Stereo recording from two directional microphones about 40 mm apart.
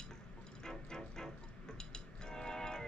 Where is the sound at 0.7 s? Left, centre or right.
Centre.